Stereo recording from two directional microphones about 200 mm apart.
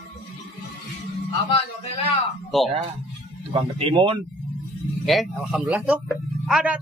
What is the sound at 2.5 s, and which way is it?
Speech, centre (ahead or behind).